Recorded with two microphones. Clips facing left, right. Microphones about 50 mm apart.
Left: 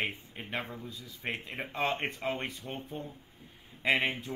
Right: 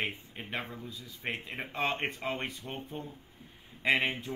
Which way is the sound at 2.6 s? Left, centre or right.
Right.